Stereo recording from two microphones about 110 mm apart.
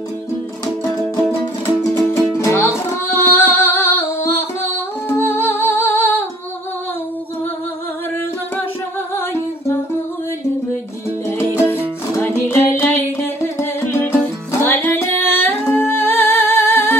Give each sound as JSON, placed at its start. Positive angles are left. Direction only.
{"t": 1.8, "sound": "music", "side_deg": 25}
{"t": 9.1, "sound": "humming", "side_deg": 20}
{"t": 11.2, "sound": "music", "side_deg": 25}